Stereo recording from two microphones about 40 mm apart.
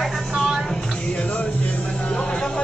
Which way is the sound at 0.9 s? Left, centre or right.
Left.